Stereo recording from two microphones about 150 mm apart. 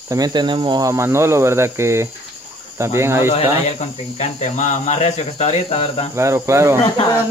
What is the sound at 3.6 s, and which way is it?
Speech, 45° left (ahead or behind).